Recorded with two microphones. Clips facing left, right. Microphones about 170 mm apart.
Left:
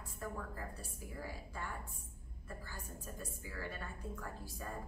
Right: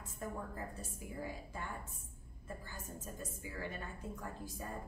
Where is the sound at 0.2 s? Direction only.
20° right (ahead or behind).